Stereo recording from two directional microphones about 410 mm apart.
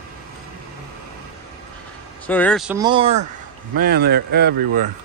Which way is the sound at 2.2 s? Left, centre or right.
Centre.